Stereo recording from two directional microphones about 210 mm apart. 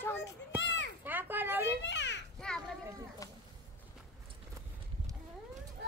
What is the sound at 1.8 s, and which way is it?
Children playing, 55° left (ahead or behind).